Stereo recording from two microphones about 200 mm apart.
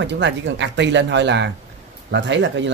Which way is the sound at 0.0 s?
60° right (ahead or behind).